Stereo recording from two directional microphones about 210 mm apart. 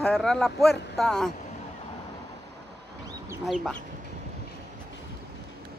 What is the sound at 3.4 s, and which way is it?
Speech, centre (ahead or behind).